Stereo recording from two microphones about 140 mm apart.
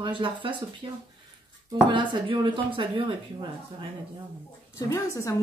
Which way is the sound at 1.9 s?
35° right (ahead or behind).